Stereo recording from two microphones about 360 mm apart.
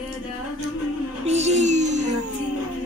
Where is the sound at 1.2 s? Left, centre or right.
Centre.